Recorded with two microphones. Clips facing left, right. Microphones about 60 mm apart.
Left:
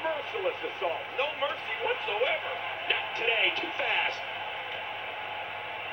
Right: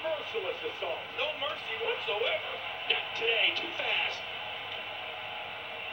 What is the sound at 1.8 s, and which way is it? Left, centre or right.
Speech, left.